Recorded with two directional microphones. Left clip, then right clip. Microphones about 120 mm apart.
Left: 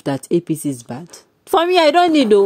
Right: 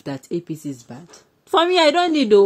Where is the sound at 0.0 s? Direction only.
40° left (ahead or behind).